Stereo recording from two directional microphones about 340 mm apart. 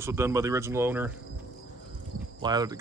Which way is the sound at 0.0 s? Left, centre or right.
Centre.